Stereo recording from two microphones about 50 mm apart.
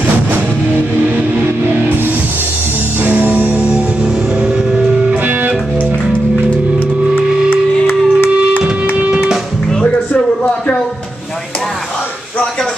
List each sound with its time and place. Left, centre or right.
3.0 s music: right
3.7 s music: centre
7.4 s music: left
8.9 s music: right